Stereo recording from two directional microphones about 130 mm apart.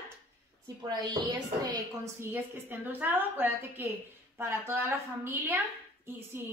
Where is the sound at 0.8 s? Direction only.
30° right (ahead or behind).